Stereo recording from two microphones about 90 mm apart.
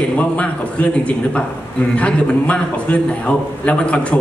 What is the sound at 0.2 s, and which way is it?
A man's voice, 15° left (ahead or behind).